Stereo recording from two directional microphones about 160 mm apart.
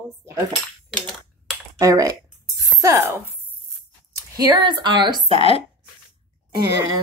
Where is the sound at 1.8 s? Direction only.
20° right (ahead or behind).